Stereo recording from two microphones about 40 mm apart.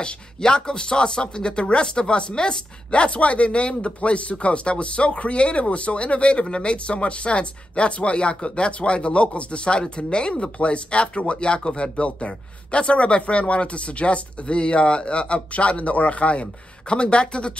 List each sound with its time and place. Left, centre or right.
0.0 s speech: left